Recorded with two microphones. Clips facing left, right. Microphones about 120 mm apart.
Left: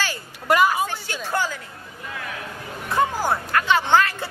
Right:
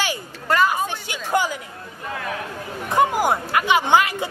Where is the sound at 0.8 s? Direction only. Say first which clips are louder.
Right 1 dB; 15° right (ahead or behind).